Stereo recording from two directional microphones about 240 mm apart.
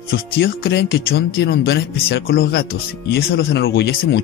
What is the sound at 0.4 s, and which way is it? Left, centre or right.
Speech, left.